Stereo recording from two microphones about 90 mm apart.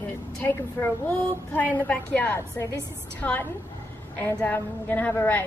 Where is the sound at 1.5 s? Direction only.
20° left (ahead or behind).